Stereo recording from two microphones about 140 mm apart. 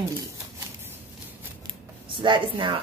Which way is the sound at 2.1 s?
35° right (ahead or behind).